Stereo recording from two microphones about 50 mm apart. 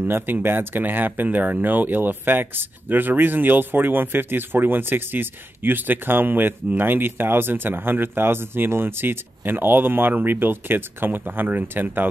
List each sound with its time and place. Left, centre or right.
0.0 s speech: right